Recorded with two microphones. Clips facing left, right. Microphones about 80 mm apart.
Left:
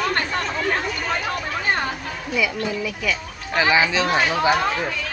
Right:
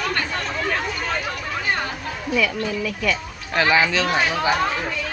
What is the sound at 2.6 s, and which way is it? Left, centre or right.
Speech, centre.